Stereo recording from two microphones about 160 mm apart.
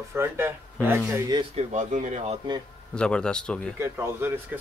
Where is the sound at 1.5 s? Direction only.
50° right (ahead or behind).